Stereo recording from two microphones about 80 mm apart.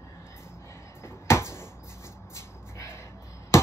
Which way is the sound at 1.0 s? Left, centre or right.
Left.